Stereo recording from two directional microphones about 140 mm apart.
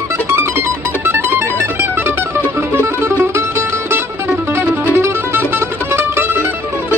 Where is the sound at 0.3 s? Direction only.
15° right (ahead or behind).